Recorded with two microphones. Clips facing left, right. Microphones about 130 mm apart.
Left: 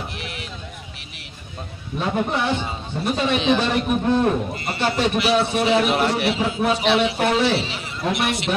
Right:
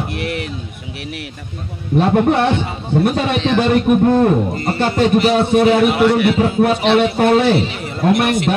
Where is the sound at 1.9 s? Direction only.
65° right (ahead or behind).